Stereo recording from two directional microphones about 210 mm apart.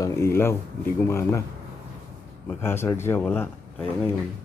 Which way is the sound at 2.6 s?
10° left (ahead or behind).